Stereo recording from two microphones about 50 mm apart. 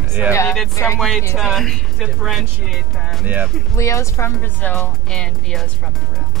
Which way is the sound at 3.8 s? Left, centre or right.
Left.